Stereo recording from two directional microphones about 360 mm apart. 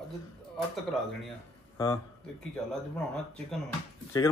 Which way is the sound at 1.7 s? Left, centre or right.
Centre.